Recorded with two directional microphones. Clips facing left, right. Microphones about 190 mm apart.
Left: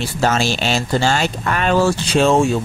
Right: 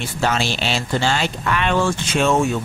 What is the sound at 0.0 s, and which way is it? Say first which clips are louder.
Speech: left 3 dB; 40° left (ahead or behind).